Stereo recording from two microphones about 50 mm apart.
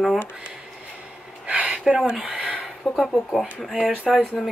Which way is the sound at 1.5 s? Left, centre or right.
Centre.